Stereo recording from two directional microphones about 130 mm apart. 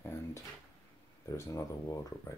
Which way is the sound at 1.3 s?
25° left (ahead or behind).